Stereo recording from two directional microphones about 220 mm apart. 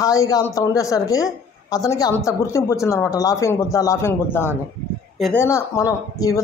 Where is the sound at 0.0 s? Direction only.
15° left (ahead or behind).